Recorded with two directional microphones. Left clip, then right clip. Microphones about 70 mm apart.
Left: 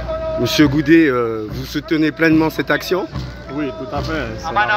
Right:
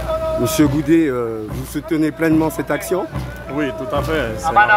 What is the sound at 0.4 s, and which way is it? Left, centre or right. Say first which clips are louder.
Speech: left 4 dB; centre.